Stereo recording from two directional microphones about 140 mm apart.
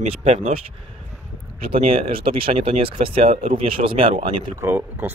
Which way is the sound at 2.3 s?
40° right (ahead or behind).